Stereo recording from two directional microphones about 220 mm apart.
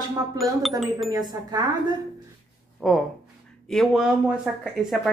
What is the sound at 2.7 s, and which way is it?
Speech, centre (ahead or behind).